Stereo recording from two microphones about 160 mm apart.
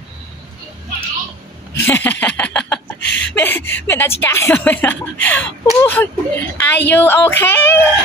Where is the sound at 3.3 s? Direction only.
15° left (ahead or behind).